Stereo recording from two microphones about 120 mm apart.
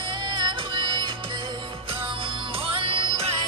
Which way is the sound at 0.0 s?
45° right (ahead or behind).